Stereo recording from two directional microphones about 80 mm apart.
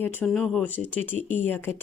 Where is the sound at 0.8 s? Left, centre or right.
Left.